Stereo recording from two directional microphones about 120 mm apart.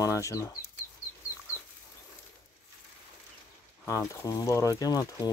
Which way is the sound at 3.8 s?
25° left (ahead or behind).